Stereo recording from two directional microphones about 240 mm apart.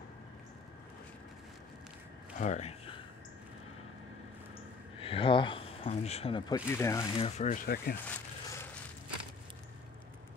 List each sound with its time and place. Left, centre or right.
2.3 s a sound: left
5.0 s speech: left
6.8 s speech: centre
7.2 s speech: left
8.0 s zipper: centre